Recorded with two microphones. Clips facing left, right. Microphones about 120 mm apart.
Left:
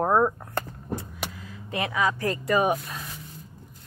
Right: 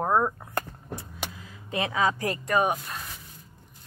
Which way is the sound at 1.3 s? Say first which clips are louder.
Even; 20° right (ahead or behind).